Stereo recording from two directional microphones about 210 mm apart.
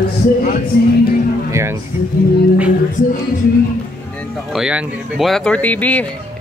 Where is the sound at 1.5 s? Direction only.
15° right (ahead or behind).